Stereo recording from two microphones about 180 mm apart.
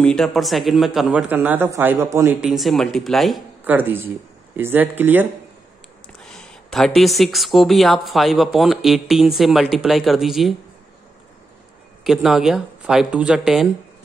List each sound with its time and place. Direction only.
0.0 s speech: 5° left (ahead or behind); by 2.3 s 15° right (ahead or behind)
2.4 s speech: centre (ahead or behind)
6.2 s speech: 5° left (ahead or behind)
12.0 s speech: centre (ahead or behind)